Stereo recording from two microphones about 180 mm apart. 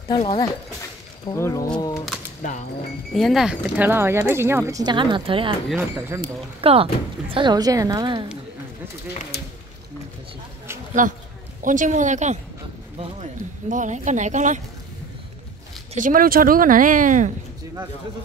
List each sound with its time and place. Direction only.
0.1 s speech: 25° left (ahead or behind)
2.4 s speech: 45° left (ahead or behind)
3.1 s speech: centre (ahead or behind); by 5.5 s 30° right (ahead or behind)
5.8 s speech: 15° right (ahead or behind)
6.6 s speech: 30° right (ahead or behind)
11.0 s speech: 45° right (ahead or behind)
15.9 s speech: 50° right (ahead or behind)